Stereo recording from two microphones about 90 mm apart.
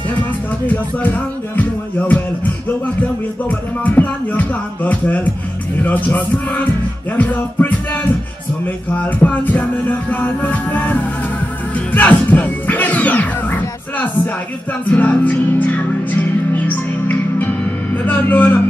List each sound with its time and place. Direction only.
0.7 s speech: 20° left (ahead or behind)
6.0 s music: 20° left (ahead or behind)
7.2 s speech: 20° left (ahead or behind)
11.9 s music: 20° left (ahead or behind)